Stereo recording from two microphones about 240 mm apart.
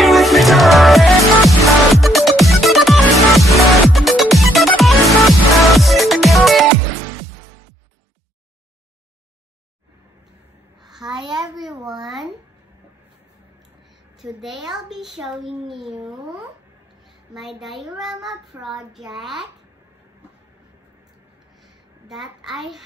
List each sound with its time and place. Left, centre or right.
0.0 s music: centre
11.0 s babbling: centre
11.5 s a sound: centre
14.2 s a child's voice: centre
22.0 s a child's voice: centre